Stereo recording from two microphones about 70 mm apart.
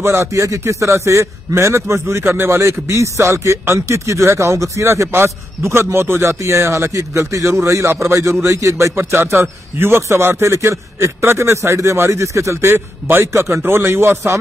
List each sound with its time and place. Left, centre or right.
0.0 s a man's voice: right
8.9 s a man's voice: right
12.7 s a man's voice: right